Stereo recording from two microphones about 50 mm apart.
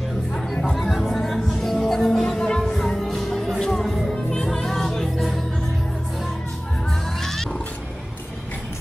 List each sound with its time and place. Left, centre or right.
0.7 s music: centre